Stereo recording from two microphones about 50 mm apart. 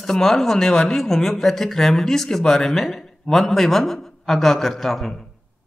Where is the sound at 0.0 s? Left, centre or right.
Centre.